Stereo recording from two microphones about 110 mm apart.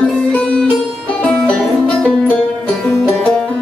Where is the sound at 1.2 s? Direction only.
10° left (ahead or behind).